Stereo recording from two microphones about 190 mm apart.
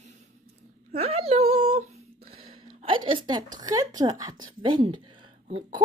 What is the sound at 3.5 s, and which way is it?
A woman's voice, 20° right (ahead or behind).